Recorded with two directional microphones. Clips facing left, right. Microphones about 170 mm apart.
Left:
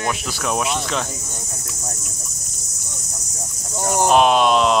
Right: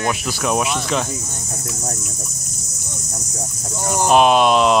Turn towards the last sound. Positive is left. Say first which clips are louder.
# right 2 dB
turn(degrees=-5)  # may be behind; listen again after turning